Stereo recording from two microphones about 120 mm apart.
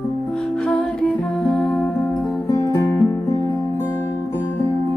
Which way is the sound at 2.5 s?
25° left (ahead or behind).